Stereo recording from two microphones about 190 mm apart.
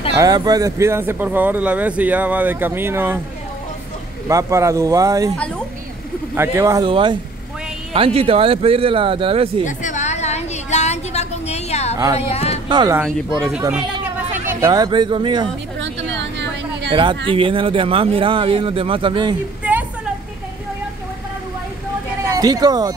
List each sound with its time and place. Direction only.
0.2 s speech: 20° right (ahead or behind)
4.3 s speech: 15° right (ahead or behind)
6.3 s speech: 10° right (ahead or behind); by 9.5 s 30° right (ahead or behind)
9.7 s a sound: 40° left (ahead or behind)
12.2 s speech: 35° left (ahead or behind)
12.6 s speech: 25° right (ahead or behind)
14.3 s speech: 10° right (ahead or behind)
15.8 s a sound: 70° right (ahead or behind)
16.9 s speech: 25° right (ahead or behind)
22.2 s speech: 20° right (ahead or behind)